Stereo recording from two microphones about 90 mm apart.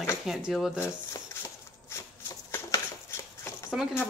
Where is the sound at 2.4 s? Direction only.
30° left (ahead or behind).